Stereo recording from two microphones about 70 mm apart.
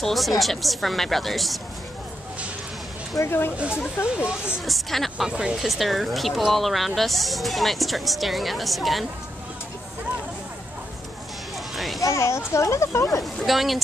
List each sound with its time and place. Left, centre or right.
0.0 s speech: centre
3.2 s speech: left
4.6 s speech: centre
5.2 s speech: centre
5.7 s speech: centre
11.7 s a sound: centre
12.0 s speech: left
13.2 s speech: centre